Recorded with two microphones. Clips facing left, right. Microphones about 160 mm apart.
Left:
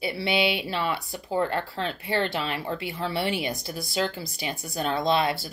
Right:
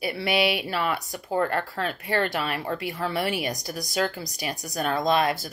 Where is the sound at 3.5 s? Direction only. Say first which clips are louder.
Right 1 dB; 40° right (ahead or behind).